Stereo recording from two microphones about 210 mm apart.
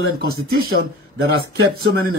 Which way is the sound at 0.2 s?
80° right.